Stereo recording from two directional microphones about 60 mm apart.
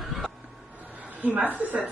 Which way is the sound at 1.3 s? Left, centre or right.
Right.